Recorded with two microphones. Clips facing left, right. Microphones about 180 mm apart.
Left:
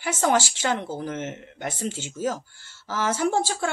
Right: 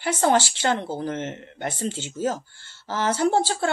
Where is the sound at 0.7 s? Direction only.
25° right (ahead or behind).